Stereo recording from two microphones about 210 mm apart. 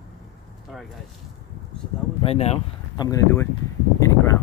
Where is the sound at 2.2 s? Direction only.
30° left (ahead or behind).